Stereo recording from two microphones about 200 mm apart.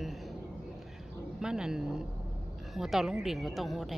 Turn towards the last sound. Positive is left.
turn(degrees=0)  # may be behind; listen again after turning